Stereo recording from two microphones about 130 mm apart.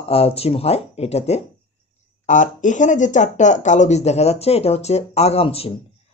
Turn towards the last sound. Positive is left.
turn(degrees=50)  # may be behind; listen again after turning